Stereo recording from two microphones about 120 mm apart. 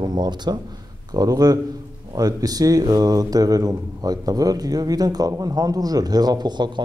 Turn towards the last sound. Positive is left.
turn(degrees=-35)  # may be behind; listen again after turning